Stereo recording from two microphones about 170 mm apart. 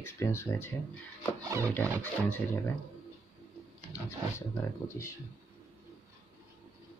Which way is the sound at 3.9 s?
15° left (ahead or behind).